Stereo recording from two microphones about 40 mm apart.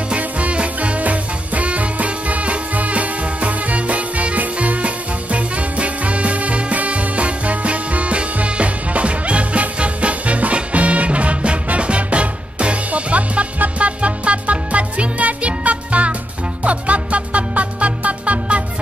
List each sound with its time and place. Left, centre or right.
0.1 s music: right